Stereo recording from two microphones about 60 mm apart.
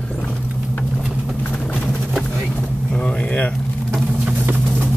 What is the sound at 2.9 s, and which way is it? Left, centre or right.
Vehicle, centre.